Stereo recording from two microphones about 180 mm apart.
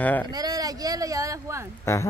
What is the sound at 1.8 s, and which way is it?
Speech, 15° left (ahead or behind).